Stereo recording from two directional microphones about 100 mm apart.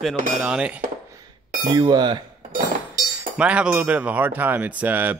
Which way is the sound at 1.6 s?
40° right (ahead or behind).